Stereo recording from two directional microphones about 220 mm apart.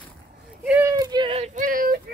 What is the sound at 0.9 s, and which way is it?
Child singing, 20° right (ahead or behind).